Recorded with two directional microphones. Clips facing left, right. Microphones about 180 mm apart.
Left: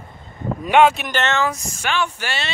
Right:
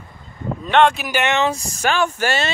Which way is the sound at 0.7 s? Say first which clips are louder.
Left 1 dB; 5° left (ahead or behind).